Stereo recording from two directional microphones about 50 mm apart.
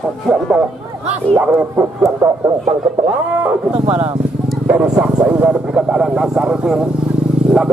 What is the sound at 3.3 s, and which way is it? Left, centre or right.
Speech, right.